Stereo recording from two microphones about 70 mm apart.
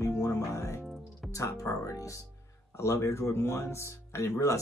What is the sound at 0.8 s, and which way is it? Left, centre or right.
Music, centre.